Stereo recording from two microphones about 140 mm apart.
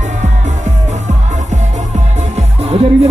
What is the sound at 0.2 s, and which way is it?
Music, 55° right (ahead or behind).